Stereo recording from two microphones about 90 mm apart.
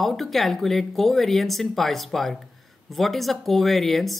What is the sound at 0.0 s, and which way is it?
Speech, centre (ahead or behind).